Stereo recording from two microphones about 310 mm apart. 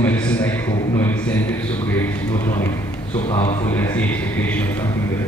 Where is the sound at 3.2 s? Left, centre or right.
Centre.